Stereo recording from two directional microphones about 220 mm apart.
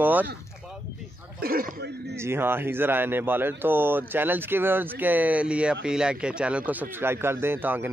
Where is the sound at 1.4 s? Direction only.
40° right (ahead or behind).